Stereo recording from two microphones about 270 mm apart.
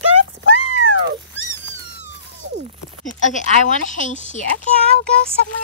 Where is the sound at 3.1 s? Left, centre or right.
Left.